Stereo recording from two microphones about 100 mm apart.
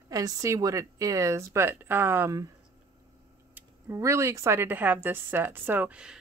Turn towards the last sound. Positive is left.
turn(degrees=-10)  # may be behind; listen again after turning